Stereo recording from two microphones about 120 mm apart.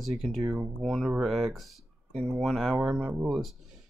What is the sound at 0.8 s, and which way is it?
Speech, centre (ahead or behind).